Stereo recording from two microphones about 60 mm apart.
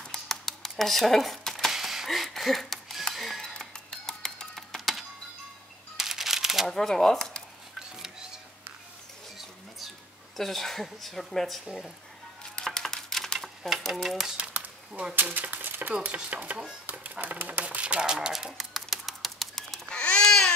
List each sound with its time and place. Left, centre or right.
0.0 s a sound: centre
1.7 s a sound: centre
3.2 s music: centre
5.9 s shuffling cards: centre
6.8 s speech: centre
9.8 s speech: centre
12.5 s dishes: centre
14.3 s a sound: right
15.1 s speech: right
15.9 s chopping: right
16.8 s typewriter: right; by 20.0 s centre
20.0 s babbling: centre